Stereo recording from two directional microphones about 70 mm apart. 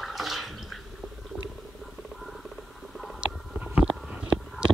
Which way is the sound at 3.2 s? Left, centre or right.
Centre.